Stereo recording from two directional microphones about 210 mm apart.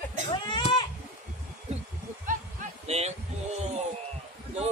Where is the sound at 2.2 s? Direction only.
35° right (ahead or behind).